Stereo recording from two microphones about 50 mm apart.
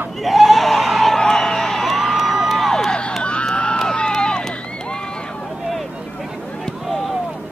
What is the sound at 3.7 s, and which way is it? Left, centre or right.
Run, centre.